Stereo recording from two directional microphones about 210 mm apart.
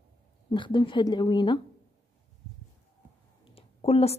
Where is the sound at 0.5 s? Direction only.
25° left (ahead or behind).